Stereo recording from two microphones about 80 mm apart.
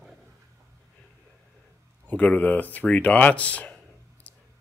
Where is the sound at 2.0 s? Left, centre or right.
Centre.